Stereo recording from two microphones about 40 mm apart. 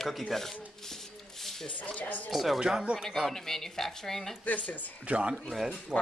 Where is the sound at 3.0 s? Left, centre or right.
Centre.